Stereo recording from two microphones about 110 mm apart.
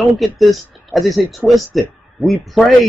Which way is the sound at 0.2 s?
Centre (ahead or behind).